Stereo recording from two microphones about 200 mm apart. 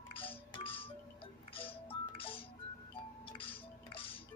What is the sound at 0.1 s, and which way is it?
Music, 25° left (ahead or behind).